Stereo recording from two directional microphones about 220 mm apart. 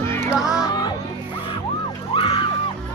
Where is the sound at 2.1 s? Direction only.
25° left (ahead or behind).